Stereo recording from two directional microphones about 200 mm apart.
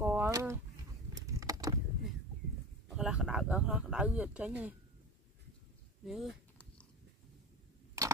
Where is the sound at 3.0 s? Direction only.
5° right (ahead or behind).